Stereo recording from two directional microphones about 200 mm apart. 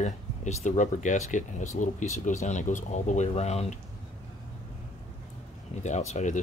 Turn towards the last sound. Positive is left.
turn(degrees=35)  # may be behind; listen again after turning